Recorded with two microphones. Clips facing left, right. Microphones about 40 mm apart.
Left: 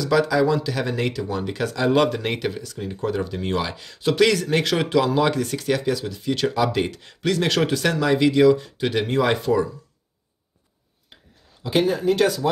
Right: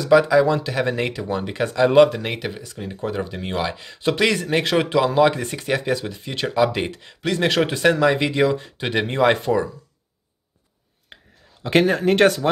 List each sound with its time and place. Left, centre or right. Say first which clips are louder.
0.0 s speech: right 4 dB; right
2.0 s speech: right 5 dB; centre
2.5 s speech: left 1 dB; centre
11.6 s speech: right 3 dB; right